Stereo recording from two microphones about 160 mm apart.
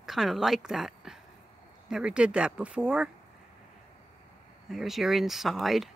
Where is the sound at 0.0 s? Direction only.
Centre (ahead or behind).